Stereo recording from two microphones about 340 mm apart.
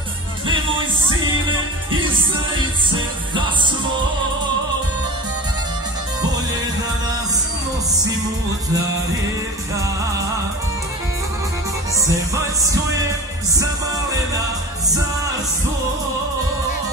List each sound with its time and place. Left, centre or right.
2.9 s music: centre
12.0 s music: centre